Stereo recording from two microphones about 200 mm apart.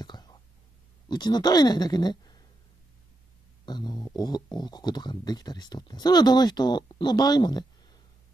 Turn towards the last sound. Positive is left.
turn(degrees=20)  # may be behind; listen again after turning